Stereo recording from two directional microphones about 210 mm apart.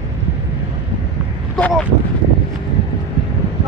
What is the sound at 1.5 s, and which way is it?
Speech, 5° left (ahead or behind).